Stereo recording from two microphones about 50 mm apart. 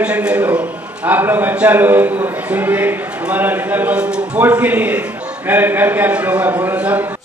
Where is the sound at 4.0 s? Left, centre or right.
Right.